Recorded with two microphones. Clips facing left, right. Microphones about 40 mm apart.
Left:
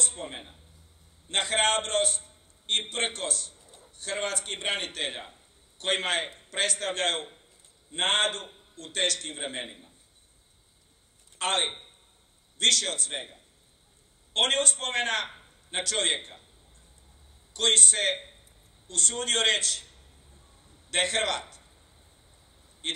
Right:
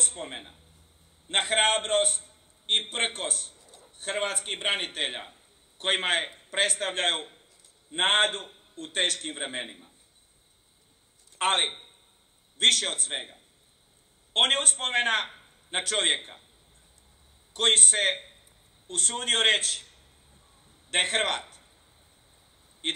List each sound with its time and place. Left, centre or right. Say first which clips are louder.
0.0 s a sound: even; right
1.3 s a man's voice: right 1 dB; right
3.5 s a sound: even; left
4.0 s a man's voice: right 1 dB; right
9.7 s a man's voice: even; centre
11.3 s a man's voice: right 2 dB; right
14.3 s a man's voice: right 1 dB; right
17.6 s a man's voice: right 1 dB; right
22.8 s speech: right 2 dB; right